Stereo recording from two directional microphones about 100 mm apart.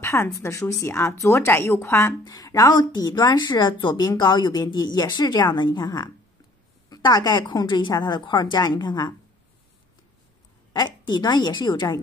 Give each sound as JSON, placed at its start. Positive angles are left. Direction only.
{"t": 0.0, "sound": "speech", "side_deg": 30}
{"t": 2.2, "sound": "speech", "side_deg": 40}
{"t": 10.7, "sound": "speech", "side_deg": 45}